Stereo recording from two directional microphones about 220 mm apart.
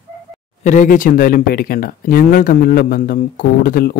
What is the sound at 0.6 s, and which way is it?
Speech, 35° left (ahead or behind).